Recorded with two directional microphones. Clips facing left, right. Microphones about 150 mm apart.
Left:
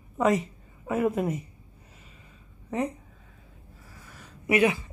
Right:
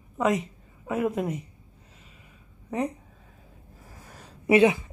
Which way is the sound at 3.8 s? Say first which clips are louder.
Right 2 dB; 40° right (ahead or behind).